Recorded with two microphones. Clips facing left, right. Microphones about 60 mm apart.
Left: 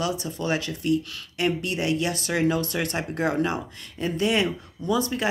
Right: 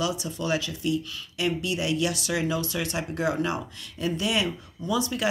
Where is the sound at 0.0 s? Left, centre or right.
Left.